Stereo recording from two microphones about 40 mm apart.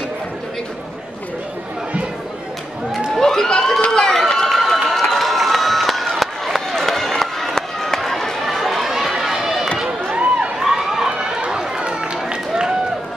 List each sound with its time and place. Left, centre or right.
3.2 s a sound: centre
3.9 s run: centre
4.5 s crowd: centre
10.6 s run: centre
11.1 s run: right